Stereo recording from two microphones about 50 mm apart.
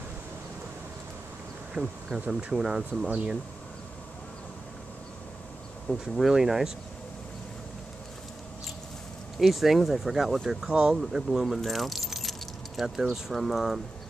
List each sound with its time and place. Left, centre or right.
1.7 s insect: centre
2.5 s speech: centre
5.9 s speech: centre
9.4 s speech: centre